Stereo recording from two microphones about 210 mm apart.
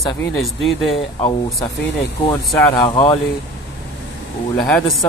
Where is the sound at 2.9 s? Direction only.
20° left (ahead or behind).